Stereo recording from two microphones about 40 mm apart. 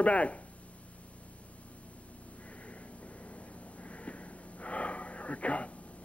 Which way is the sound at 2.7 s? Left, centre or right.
Left.